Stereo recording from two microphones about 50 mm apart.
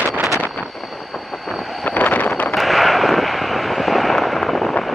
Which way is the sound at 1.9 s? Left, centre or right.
Left.